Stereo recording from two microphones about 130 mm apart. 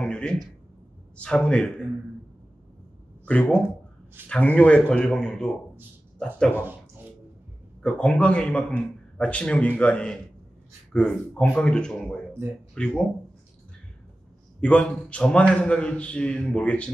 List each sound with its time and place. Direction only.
0.0 s a sound: 5° left (ahead or behind)
1.1 s a man's voice: 10° left (ahead or behind)
3.3 s a man's voice: 10° left (ahead or behind)
6.5 s speech: 15° right (ahead or behind)
7.8 s a man's voice: 5° left (ahead or behind)
14.6 s a man's voice: 10° left (ahead or behind)